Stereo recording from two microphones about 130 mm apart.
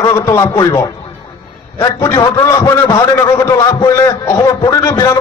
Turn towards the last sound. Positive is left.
turn(degrees=25)  # may be behind; listen again after turning